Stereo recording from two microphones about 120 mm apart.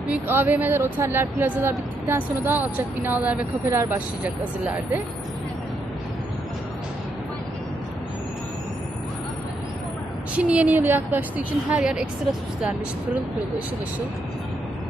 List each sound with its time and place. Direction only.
0.1 s speech: 15° right (ahead or behind)
10.3 s speech: 10° right (ahead or behind)